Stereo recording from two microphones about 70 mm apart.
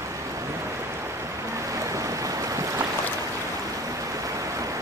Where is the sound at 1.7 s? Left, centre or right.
Right.